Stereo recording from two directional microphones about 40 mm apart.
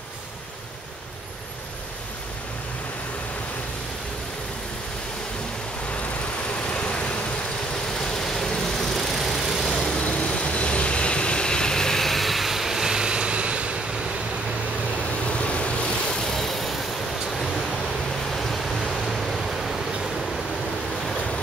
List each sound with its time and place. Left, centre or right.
6.7 s vehicle: left
8.0 s vehicle: centre
9.9 s vehicle: left
12.0 s vehicle: centre; by 13.7 s right
15.2 s vehicle: left
16.3 s vehicle: centre
18.3 s waves: centre